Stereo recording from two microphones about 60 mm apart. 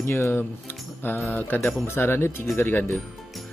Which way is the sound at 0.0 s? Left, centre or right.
Left.